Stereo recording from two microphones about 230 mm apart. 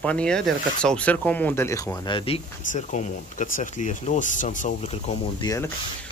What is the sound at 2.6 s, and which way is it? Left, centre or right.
Speech, left.